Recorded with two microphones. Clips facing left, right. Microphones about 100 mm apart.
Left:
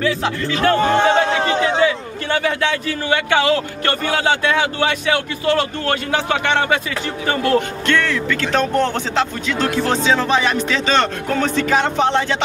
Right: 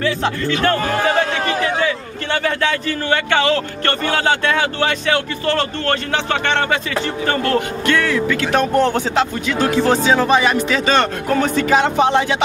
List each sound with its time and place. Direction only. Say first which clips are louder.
0.0 s music: right 1 dB; centre (ahead or behind)
0.7 s a sound: left 3 dB; 25° left (ahead or behind)
1.9 s a man's voice: left 1 dB; 5° left (ahead or behind)
7.8 s speech: right 2 dB; 10° right (ahead or behind)